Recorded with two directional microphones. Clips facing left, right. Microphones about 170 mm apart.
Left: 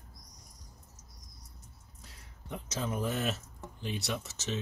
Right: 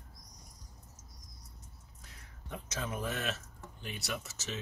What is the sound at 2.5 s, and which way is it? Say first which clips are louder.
Speech: left 3 dB; 25° left (ahead or behind).